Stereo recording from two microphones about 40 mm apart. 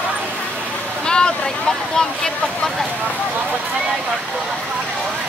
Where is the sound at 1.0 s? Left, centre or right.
Left.